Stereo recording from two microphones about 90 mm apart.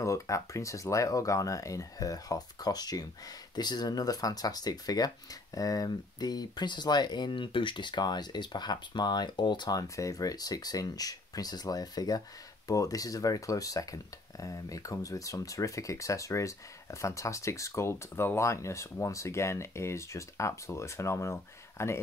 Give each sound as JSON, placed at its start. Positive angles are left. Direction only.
{"t": 0.0, "sound": "speech", "side_deg": 35}